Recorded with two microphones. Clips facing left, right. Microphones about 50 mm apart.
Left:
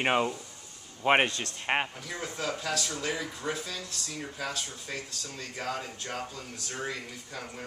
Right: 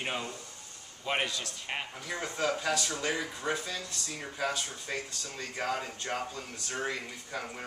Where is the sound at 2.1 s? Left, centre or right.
Centre.